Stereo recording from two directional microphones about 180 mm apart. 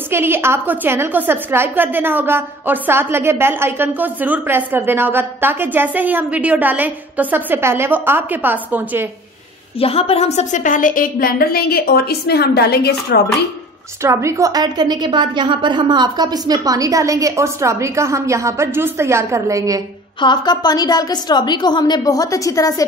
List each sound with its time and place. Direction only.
0.1 s a woman's voice: 15° right (ahead or behind)
9.8 s a woman's voice: 30° left (ahead or behind); by 13.2 s 65° left (ahead or behind)
14.0 s a woman's voice: 15° right (ahead or behind)
20.2 s a woman's voice: 25° left (ahead or behind)